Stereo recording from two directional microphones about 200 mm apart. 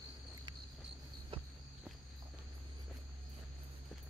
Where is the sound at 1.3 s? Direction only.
25° right (ahead or behind).